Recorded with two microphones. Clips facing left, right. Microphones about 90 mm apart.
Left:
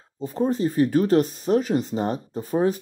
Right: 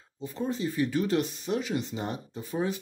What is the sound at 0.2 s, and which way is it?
Speech, 40° left (ahead or behind).